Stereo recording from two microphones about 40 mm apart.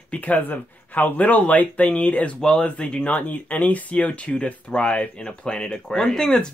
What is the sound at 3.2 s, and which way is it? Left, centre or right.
Speech, left.